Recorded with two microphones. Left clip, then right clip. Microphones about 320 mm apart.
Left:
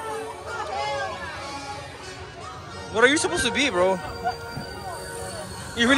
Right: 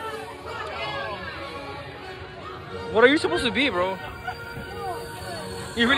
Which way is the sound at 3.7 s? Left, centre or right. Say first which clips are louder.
Left 4 dB; centre.